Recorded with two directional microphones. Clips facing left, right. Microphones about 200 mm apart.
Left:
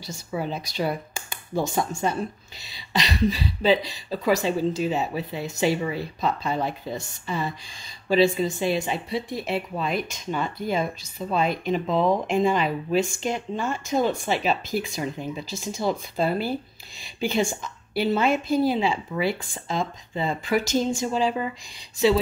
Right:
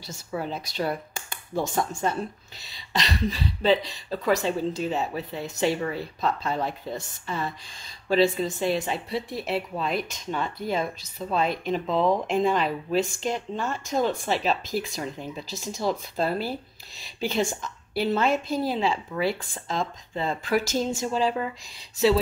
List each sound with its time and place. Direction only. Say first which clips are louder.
0.0 s speech: left 2 dB; centre (ahead or behind)